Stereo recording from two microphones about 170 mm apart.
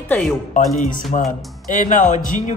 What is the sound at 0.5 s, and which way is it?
Speech, 50° left (ahead or behind).